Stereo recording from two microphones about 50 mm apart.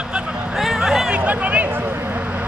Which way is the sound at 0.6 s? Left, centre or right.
Centre.